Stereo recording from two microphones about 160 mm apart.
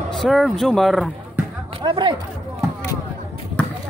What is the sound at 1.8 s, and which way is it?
Speech, 30° right (ahead or behind).